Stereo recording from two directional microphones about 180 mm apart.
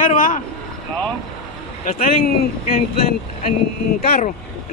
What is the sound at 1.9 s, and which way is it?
Speech, 50° left (ahead or behind).